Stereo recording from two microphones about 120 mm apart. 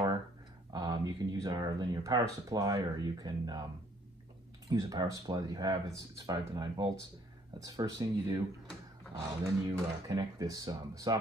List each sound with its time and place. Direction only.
0.7 s speech: 35° right (ahead or behind)
4.6 s speech: 30° right (ahead or behind)
9.7 s speech: 30° right (ahead or behind)